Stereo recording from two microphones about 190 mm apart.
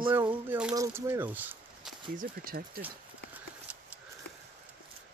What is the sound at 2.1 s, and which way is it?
Speech, 50° right (ahead or behind).